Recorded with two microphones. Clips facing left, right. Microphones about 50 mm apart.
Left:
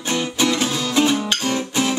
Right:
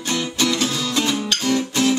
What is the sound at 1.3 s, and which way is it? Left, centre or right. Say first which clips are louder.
Guitar: right 1 dB; centre.